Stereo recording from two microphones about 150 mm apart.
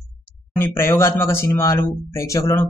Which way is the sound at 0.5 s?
15° left (ahead or behind).